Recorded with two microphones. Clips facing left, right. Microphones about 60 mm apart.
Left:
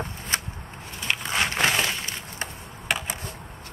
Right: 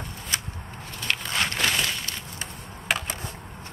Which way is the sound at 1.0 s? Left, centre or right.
Centre.